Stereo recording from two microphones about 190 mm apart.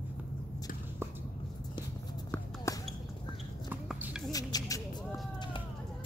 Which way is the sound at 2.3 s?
15° left (ahead or behind).